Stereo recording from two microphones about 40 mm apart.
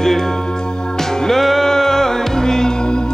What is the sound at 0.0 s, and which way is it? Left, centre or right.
Music, centre.